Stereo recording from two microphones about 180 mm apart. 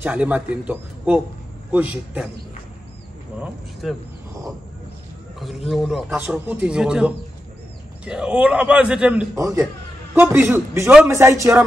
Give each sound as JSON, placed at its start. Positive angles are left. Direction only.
{"t": 0.0, "sound": "a man's voice", "side_deg": -5}
{"t": 3.3, "sound": "speech", "side_deg": -5}
{"t": 5.7, "sound": "speech", "side_deg": 0}
{"t": 9.3, "sound": "a man's voice", "side_deg": -20}